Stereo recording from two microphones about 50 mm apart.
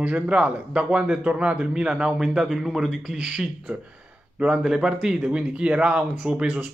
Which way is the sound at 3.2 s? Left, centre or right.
Centre.